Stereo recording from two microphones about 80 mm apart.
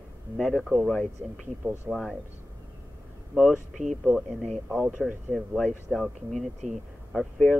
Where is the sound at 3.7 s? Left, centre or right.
Centre.